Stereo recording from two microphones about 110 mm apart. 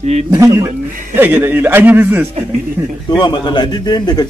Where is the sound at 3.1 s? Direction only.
45° left (ahead or behind).